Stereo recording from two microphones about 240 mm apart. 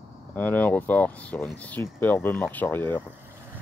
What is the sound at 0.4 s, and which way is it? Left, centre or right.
Speech, centre.